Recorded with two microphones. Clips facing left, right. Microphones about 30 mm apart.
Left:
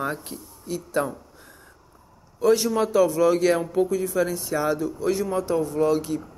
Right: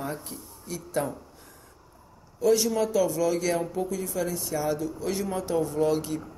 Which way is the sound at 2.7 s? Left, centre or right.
Left.